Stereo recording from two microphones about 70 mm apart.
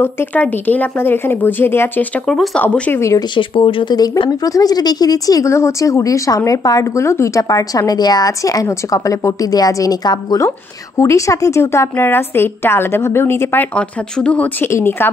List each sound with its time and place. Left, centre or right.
0.0 s a woman's voice: left
2.2 s speech: centre
2.6 s a woman's voice: centre
2.9 s speech: left
3.8 s speech: left
5.5 s a woman's voice: left
13.7 s a woman's voice: centre
14.6 s a woman's voice: left